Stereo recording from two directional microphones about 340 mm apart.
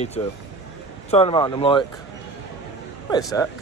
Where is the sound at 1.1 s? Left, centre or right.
Centre.